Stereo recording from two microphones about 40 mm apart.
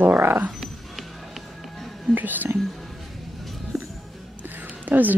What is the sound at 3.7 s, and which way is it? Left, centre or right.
Music, centre.